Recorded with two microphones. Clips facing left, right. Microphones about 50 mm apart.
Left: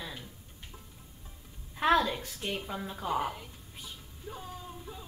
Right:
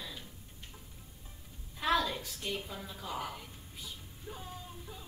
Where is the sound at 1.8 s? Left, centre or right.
Left.